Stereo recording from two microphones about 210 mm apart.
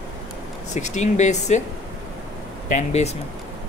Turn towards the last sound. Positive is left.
turn(degrees=30)  # may be behind; listen again after turning